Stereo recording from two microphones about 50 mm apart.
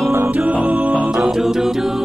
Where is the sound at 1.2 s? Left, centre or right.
Centre.